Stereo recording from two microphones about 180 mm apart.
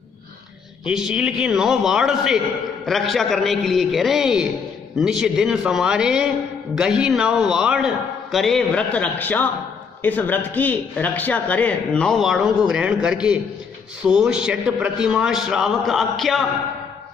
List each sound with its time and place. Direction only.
0.8 s a man's voice: 5° right (ahead or behind)